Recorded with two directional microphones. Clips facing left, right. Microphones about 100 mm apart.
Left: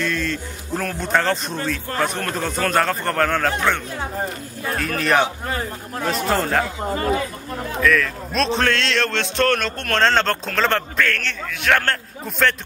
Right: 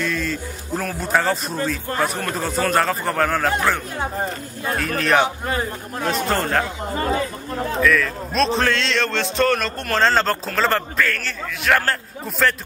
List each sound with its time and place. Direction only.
0.0 s a man's voice: centre (ahead or behind)
7.8 s a man's voice: centre (ahead or behind)